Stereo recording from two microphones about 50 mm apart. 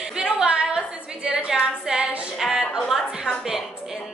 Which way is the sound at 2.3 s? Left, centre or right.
Centre.